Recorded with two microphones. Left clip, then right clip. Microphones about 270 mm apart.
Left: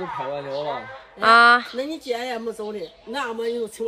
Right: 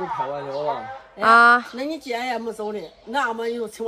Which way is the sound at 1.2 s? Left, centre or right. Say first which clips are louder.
Even; centre.